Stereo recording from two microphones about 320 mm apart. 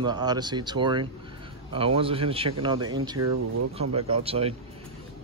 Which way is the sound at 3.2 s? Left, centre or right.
Right.